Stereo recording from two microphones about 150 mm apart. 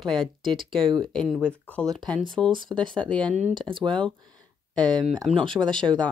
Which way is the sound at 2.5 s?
30° right (ahead or behind).